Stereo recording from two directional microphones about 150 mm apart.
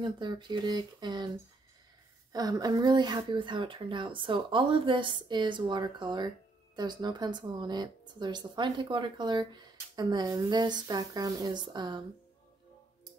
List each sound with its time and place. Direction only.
0.0 s speech: 30° right (ahead or behind)
2.3 s speech: 25° right (ahead or behind)